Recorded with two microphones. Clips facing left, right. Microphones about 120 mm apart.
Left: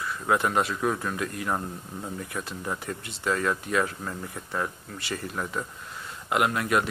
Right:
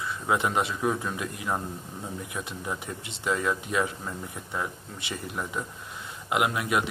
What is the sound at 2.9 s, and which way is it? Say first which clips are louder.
Speech: left 1 dB; 20° right (ahead or behind).